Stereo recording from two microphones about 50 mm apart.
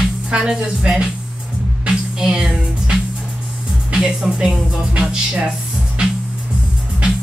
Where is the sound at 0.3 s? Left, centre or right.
Centre.